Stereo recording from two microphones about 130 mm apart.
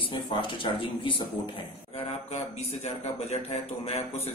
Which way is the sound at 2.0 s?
55° left (ahead or behind).